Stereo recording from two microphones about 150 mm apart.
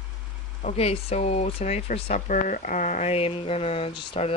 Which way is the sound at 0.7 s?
40° left (ahead or behind).